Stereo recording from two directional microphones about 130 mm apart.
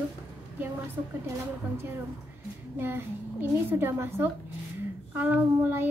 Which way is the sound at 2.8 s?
15° right (ahead or behind).